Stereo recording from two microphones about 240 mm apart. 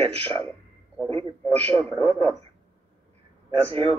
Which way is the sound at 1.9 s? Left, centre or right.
Right.